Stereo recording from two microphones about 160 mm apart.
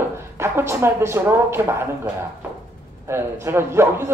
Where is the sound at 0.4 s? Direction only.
15° right (ahead or behind).